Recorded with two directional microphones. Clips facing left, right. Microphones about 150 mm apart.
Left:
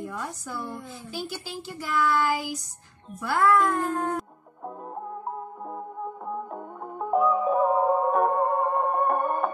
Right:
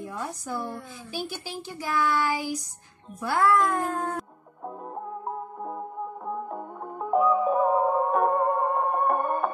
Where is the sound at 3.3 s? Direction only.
10° right (ahead or behind).